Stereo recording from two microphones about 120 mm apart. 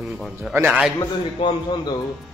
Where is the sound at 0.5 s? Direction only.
15° right (ahead or behind).